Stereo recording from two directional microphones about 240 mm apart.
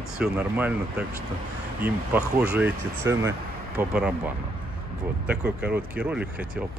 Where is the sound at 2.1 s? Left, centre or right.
Centre.